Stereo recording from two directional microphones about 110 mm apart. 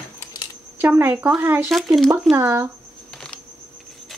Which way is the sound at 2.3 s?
20° right (ahead or behind).